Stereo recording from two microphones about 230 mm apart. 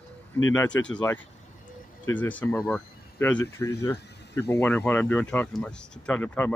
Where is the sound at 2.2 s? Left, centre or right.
Centre.